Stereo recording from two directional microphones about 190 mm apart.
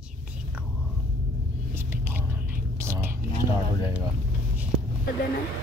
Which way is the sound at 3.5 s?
20° left (ahead or behind).